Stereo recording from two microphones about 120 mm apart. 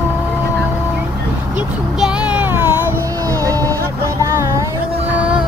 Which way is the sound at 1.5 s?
10° right (ahead or behind).